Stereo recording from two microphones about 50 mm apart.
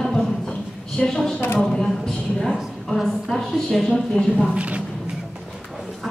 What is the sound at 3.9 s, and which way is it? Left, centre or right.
Speech, centre.